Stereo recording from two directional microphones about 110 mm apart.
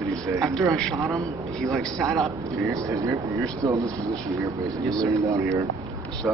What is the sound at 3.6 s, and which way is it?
Speech, 30° right (ahead or behind).